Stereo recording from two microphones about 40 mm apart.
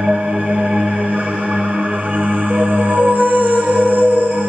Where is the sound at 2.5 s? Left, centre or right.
Right.